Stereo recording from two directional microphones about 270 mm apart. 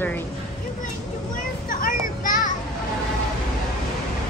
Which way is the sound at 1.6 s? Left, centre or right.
Left.